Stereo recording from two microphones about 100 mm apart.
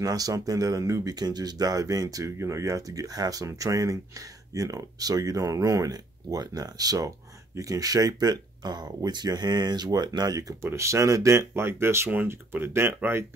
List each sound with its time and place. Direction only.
0.0 s speech: 35° right (ahead or behind)
10.6 s speech: 30° right (ahead or behind)